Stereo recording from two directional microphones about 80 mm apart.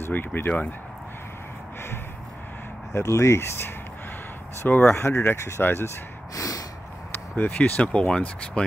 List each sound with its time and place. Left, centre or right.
0.0 s speech: left
2.9 s speech: left
4.6 s speech: left
4.9 s speech: left
6.3 s snort: left
7.6 s speech: centre